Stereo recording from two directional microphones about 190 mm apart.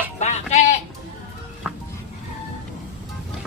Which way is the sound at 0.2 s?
40° left (ahead or behind).